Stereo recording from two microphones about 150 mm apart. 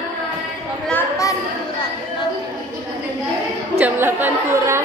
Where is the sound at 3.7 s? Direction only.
15° right (ahead or behind).